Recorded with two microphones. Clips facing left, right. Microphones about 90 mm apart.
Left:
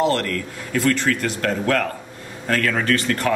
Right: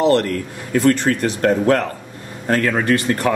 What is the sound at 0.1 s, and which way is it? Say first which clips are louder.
Speech: right 6 dB; 30° right (ahead or behind).